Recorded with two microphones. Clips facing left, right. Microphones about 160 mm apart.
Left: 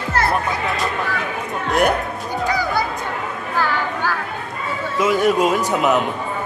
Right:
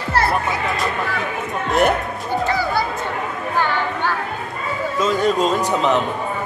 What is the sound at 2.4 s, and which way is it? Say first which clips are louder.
Music: left 1 dB; 15° left (ahead or behind).